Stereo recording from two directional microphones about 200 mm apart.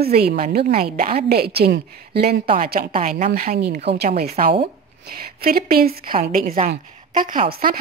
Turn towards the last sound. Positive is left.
turn(degrees=-45)  # may be behind; listen again after turning